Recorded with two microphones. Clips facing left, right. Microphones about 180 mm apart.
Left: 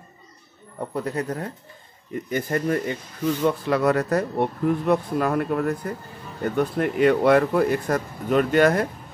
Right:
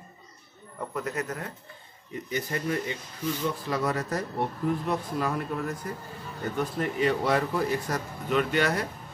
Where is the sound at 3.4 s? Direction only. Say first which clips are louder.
Left 9 dB; 65° left (ahead or behind).